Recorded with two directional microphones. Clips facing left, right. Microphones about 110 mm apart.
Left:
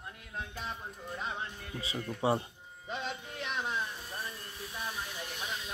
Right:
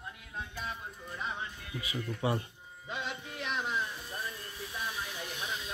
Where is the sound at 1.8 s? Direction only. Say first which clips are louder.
Even; 30° left (ahead or behind).